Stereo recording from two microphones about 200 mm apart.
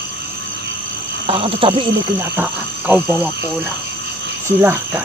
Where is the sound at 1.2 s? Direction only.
25° right (ahead or behind).